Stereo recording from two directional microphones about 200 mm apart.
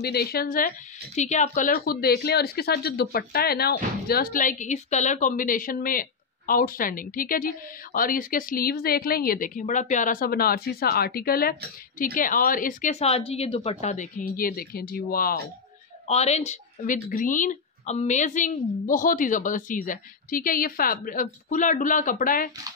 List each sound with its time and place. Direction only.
0.0 s speech: 50° left (ahead or behind)
16.1 s speech: 35° left (ahead or behind)